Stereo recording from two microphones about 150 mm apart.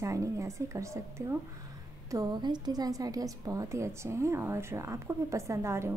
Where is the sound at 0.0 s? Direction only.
20° right (ahead or behind).